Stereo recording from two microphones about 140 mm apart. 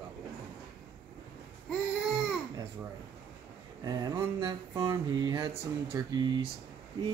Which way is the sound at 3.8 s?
25° right (ahead or behind).